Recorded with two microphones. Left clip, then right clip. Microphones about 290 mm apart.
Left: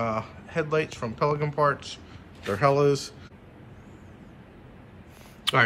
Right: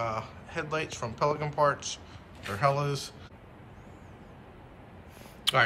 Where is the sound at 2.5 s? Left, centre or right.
Centre.